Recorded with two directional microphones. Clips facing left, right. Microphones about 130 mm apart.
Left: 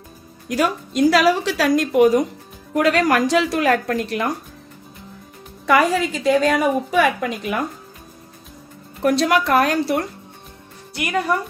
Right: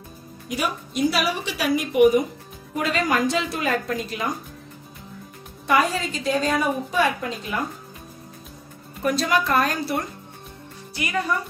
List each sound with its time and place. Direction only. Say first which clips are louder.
0.5 s a woman's voice: left 6 dB; 90° left; by 4.3 s 75° left (ahead or behind)
5.7 s a woman's voice: left 5 dB; 80° left
9.0 s a woman's voice: left 5 dB; 70° left (ahead or behind)
11.0 s speech: left 4 dB; 60° left (ahead or behind)